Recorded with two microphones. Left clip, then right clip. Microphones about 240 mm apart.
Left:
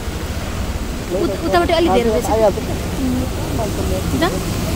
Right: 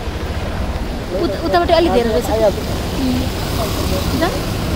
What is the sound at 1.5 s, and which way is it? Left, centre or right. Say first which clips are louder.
Speech: right 2 dB; centre.